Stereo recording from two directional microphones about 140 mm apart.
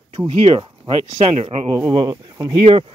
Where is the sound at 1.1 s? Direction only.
45° right (ahead or behind).